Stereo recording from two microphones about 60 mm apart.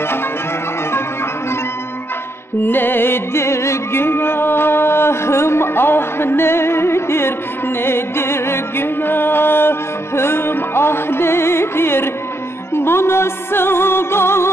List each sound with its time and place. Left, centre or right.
2.6 s music: left